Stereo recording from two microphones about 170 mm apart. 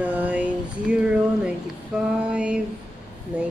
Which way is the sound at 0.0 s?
10° right (ahead or behind).